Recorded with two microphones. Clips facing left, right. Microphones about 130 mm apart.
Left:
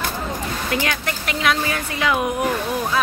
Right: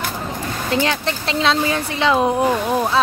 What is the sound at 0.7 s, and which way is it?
Speech, 30° right (ahead or behind).